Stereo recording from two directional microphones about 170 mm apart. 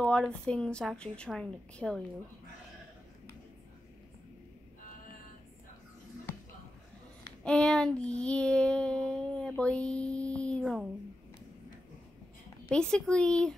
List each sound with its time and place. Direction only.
0.0 s child singing: 5° left (ahead or behind)
7.4 s child singing: 5° left (ahead or behind)
12.6 s child singing: 5° left (ahead or behind)